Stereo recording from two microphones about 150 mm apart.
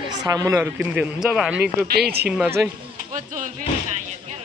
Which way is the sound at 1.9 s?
90° right.